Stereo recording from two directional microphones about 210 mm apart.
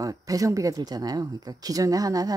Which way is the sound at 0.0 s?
15° right (ahead or behind).